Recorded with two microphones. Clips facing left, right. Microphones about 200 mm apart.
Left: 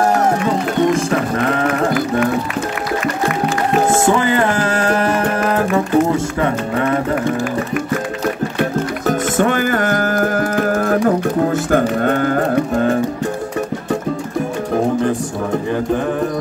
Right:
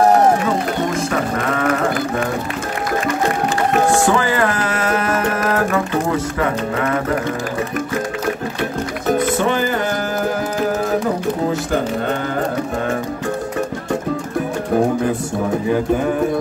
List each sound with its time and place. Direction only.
4.2 s music: 25° left (ahead or behind)
9.4 s a sound: 50° left (ahead or behind)
11.5 s speech: 50° left (ahead or behind)